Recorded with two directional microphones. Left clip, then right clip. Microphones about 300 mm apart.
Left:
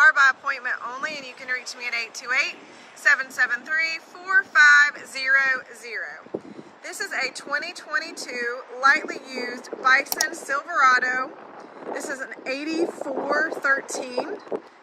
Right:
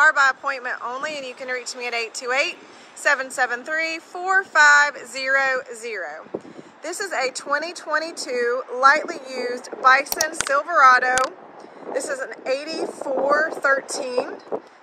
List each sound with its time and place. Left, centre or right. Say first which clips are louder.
0.0 s speech: even; centre
6.3 s a sound: left 1 dB; centre
6.8 s speech: right 3 dB; centre